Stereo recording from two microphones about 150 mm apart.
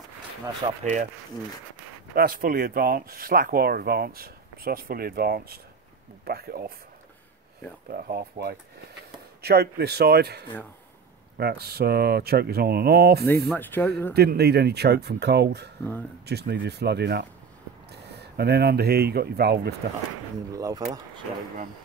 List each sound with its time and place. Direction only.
0.6 s speech: 35° right (ahead or behind)
2.1 s speech: 80° right
7.9 s speech: 90° right
13.6 s speech: 15° left (ahead or behind)
14.1 s speech: 90° right
20.5 s speech: 25° right (ahead or behind)